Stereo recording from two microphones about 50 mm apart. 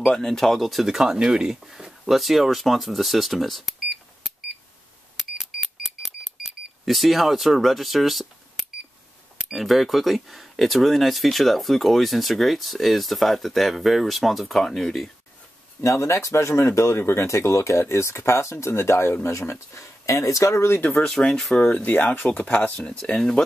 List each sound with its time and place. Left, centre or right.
0.0 s speech: centre
5.4 s a sound: centre
6.0 s a sound: centre
9.5 s speech: centre
14.6 s speech: centre
15.8 s speech: left
18.7 s speech: left
21.0 s speech: centre
21.5 s speech: left
22.3 s speech: left
23.0 s speech: centre